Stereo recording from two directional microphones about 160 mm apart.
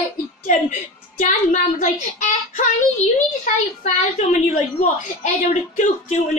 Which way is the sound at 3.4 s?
50° left (ahead or behind).